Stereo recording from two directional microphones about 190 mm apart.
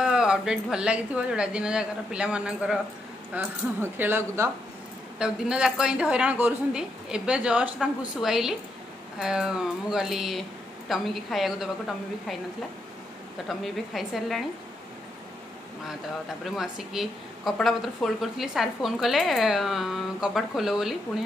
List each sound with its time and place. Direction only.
0.0 s a woman's voice: 5° right (ahead or behind)
13.5 s a woman's voice: centre (ahead or behind)
16.4 s a woman's voice: 5° right (ahead or behind)